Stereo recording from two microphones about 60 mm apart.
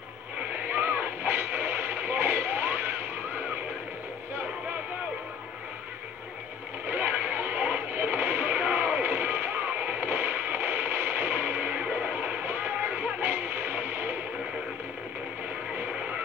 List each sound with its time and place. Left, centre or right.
0.7 s vehicle: right
6.9 s music: right